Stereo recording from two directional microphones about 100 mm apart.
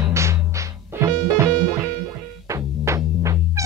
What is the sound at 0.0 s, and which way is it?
Music, 30° right (ahead or behind).